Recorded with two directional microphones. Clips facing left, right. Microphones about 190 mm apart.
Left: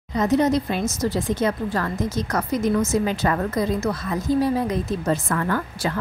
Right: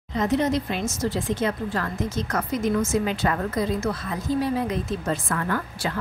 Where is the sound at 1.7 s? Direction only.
40° left (ahead or behind).